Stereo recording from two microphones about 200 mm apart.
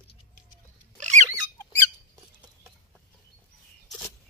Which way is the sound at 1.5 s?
10° left (ahead or behind).